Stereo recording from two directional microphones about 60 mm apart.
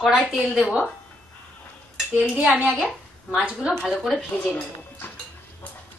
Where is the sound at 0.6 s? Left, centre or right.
Centre.